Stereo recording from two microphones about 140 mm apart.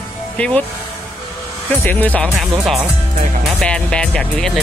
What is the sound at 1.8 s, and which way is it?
Speech, 10° left (ahead or behind).